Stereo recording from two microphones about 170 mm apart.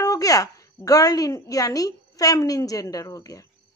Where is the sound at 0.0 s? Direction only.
20° left (ahead or behind).